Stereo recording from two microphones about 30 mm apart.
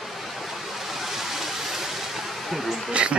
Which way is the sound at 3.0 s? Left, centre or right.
Right.